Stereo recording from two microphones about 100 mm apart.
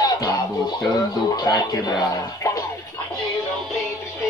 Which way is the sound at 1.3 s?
40° left (ahead or behind).